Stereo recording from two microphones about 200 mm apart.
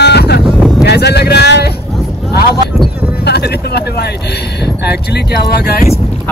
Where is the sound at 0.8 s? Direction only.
55° left (ahead or behind).